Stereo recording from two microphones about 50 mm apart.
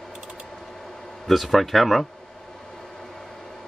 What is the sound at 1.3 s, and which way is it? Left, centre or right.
Speech, centre.